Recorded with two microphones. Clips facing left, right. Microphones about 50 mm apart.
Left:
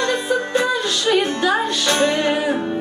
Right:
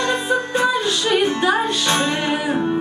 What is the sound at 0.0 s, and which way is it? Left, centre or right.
Music, right.